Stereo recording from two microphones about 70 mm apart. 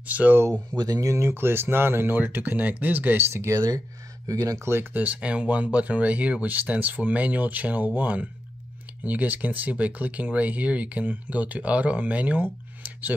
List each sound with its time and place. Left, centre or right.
0.0 s speech: right
0.5 s speech: right
1.0 s speech: right
1.3 s speech: right
4.3 s speech: right
4.9 s speech: right